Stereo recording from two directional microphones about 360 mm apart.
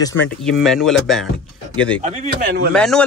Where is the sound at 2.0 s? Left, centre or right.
Centre.